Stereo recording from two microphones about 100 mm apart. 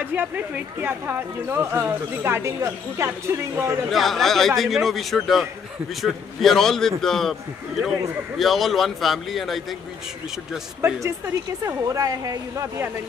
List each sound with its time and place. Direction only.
0.0 s speech: 20° right (ahead or behind)
3.9 s speech: centre (ahead or behind)
8.4 s speech: centre (ahead or behind)
10.8 s speech: 25° right (ahead or behind)